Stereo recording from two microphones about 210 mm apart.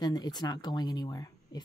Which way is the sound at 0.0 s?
20° left (ahead or behind).